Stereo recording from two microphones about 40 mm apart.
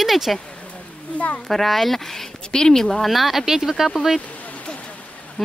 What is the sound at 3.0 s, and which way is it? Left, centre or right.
Speech, centre.